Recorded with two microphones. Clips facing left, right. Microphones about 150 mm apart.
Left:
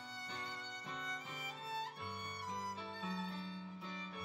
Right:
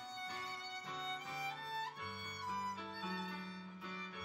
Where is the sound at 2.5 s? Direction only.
25° left (ahead or behind).